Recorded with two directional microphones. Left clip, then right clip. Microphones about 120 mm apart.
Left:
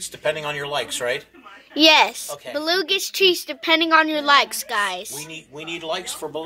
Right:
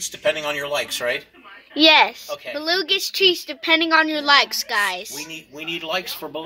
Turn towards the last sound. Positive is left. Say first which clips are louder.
# right 1 dB
turn(degrees=-30)  # may be behind; listen again after turning